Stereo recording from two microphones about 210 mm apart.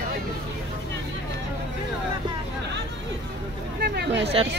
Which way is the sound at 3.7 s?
50° right (ahead or behind).